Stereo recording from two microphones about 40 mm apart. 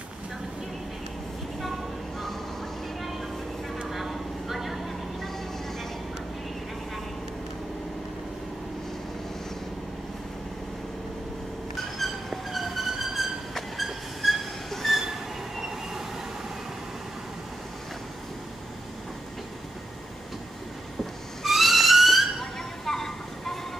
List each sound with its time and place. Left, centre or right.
1.6 s vehicle: centre
3.0 s train: centre
3.8 s vehicle: centre
11.7 s train: centre
21.5 s a sound: centre
22.4 s a sound: centre